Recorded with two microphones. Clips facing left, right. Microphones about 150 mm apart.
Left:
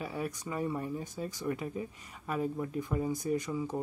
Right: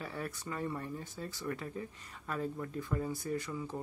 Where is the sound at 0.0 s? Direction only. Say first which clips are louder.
Left 4 dB; 15° left (ahead or behind).